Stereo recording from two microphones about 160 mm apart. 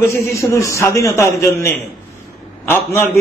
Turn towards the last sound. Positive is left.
turn(degrees=15)  # may be behind; listen again after turning